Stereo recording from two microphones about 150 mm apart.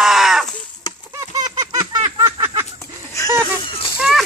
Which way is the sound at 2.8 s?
20° left (ahead or behind).